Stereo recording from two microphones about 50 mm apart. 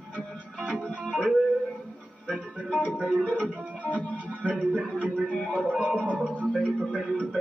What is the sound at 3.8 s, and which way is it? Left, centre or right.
Music, left.